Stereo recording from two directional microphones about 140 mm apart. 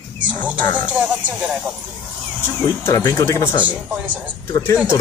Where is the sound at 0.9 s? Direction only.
10° right (ahead or behind).